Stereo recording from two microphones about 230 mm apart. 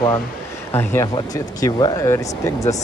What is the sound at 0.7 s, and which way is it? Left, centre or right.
Speech, centre.